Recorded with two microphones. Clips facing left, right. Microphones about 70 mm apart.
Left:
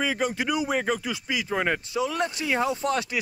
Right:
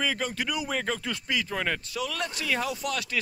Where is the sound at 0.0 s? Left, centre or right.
Centre.